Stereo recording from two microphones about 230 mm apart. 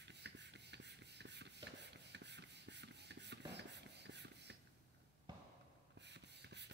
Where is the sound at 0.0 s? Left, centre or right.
Right.